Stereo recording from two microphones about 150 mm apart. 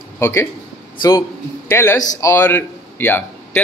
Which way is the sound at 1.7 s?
15° left (ahead or behind).